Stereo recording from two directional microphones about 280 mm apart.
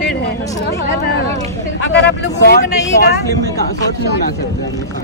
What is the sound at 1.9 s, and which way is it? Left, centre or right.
Speech, left.